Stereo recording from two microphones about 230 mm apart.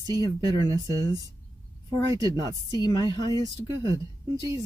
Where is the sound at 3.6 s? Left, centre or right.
Centre.